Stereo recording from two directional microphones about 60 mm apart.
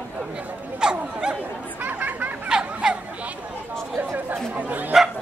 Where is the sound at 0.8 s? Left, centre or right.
Centre.